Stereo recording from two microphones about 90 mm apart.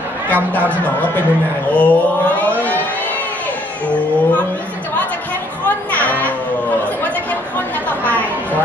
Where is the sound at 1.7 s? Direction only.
15° left (ahead or behind).